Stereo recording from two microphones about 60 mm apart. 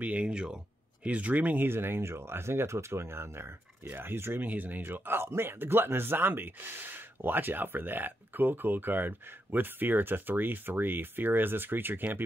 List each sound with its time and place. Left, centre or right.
0.0 s speech: right
4.4 s speech: right